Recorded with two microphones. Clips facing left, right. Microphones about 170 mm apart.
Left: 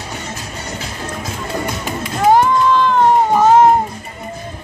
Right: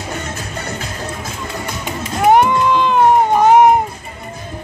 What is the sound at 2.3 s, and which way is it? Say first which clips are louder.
Cat: even; 15° right (ahead or behind).